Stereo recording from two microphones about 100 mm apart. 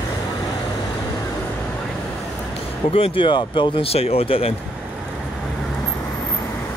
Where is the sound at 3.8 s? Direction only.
85° left.